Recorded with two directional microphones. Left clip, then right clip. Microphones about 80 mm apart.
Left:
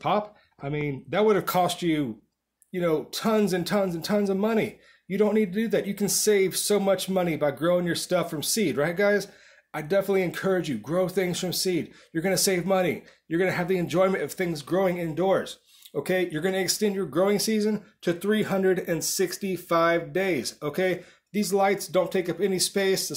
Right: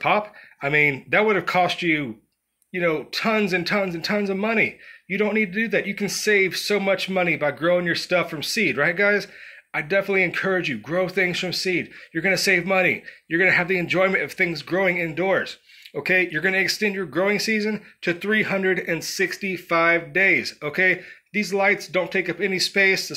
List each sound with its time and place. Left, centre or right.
0.0 s speech: left